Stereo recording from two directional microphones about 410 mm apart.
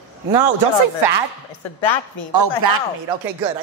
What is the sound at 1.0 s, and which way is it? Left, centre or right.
Speech, right.